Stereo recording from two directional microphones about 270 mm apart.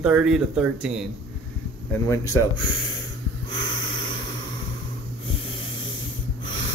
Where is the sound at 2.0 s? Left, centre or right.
Centre.